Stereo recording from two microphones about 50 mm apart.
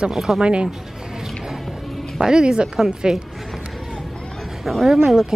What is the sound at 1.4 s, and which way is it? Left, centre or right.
Music, centre.